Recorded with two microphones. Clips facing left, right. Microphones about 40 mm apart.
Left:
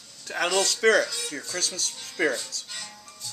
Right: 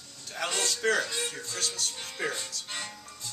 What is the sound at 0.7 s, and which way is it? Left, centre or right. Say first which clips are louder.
Speech: left 6 dB; left.